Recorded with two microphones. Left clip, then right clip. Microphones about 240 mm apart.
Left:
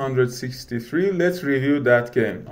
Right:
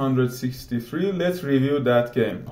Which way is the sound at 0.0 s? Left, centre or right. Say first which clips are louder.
Left 2 dB; left.